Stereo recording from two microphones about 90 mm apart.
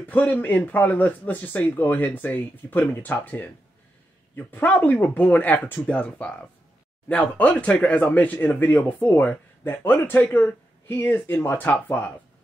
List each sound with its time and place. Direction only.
0.0 s speech: 15° left (ahead or behind)